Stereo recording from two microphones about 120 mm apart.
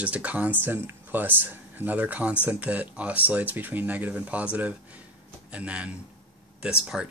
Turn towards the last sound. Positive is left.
turn(degrees=-5)  # may be behind; listen again after turning